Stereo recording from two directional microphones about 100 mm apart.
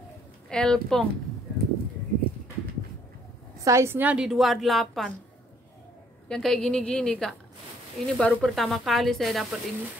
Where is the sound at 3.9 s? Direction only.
10° right (ahead or behind).